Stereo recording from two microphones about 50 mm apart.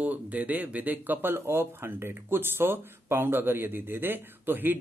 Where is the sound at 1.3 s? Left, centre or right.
Right.